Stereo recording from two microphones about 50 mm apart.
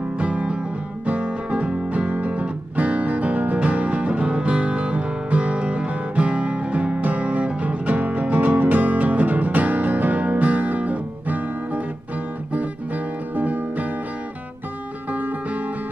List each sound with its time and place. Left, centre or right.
0.2 s music: right
12.5 s guitar: right
15.1 s music: right